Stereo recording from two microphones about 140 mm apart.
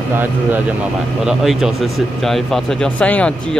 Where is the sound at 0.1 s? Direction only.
15° right (ahead or behind).